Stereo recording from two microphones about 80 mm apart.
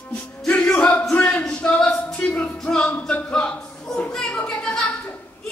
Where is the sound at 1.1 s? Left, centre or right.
Centre.